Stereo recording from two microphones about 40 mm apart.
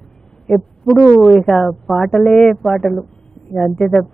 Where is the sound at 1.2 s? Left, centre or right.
Centre.